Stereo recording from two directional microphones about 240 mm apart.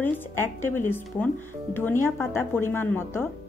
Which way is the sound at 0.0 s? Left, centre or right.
Centre.